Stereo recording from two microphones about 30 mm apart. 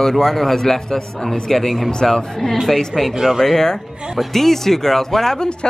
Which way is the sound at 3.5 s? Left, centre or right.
Centre.